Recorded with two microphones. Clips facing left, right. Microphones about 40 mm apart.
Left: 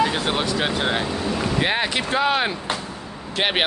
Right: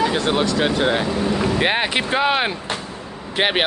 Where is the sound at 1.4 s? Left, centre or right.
Centre.